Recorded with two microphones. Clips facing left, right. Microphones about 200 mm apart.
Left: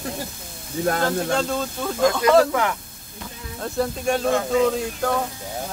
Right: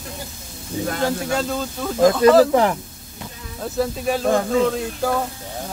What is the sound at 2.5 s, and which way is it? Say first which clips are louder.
Speech: right 6 dB; 35° right (ahead or behind).